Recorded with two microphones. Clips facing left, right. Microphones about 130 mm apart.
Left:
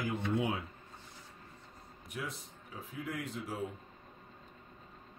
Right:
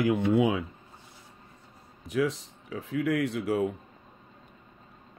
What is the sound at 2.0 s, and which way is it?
Speech, 90° right.